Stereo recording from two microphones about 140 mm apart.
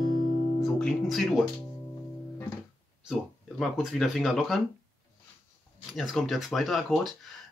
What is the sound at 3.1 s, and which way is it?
Speech, centre (ahead or behind).